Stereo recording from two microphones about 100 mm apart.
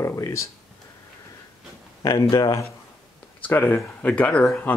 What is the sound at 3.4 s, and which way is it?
Speech, 20° left (ahead or behind).